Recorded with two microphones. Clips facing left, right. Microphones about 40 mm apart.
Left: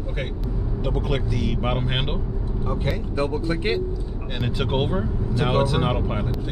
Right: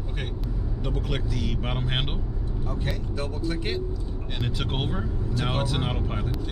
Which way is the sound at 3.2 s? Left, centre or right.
Left.